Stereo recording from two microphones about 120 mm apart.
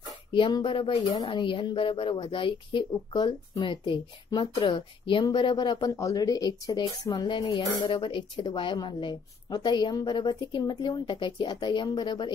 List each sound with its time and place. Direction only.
0.3 s speech: 40° left (ahead or behind)